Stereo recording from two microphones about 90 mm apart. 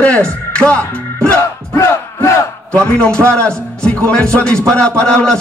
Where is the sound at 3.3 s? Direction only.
10° left (ahead or behind).